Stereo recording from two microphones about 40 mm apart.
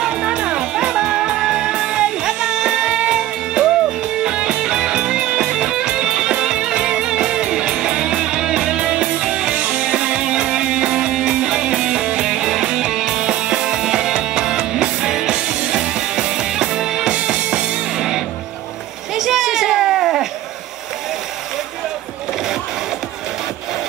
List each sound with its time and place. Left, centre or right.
0.0 s music: centre
9.9 s music: right
17.4 s music: right
17.9 s music: centre
19.1 s children playing: centre